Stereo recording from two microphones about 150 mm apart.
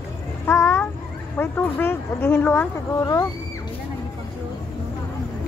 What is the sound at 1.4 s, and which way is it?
Speech, 15° left (ahead or behind).